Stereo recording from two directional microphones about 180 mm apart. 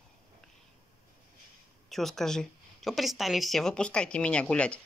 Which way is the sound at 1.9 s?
Centre (ahead or behind).